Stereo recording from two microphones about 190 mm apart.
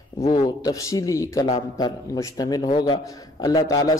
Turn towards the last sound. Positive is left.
turn(degrees=20)  # may be behind; listen again after turning